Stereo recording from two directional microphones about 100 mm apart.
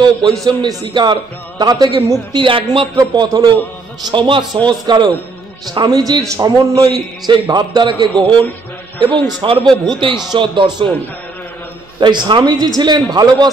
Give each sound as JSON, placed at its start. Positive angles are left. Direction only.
{"t": 0.5, "sound": "a man's voice", "side_deg": -40}
{"t": 2.3, "sound": "a man's voice", "side_deg": -60}
{"t": 3.0, "sound": "a man's voice", "side_deg": -45}
{"t": 12.0, "sound": "a man's voice", "side_deg": -50}